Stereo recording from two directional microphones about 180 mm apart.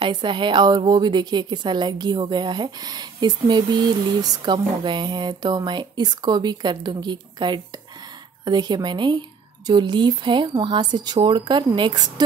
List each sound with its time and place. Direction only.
0.0 s a woman's voice: 25° right (ahead or behind)